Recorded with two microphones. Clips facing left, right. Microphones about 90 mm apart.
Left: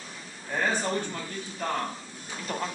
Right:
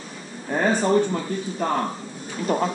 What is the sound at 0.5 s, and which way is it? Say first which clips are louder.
A man's voice: right 8 dB; 25° right (ahead or behind).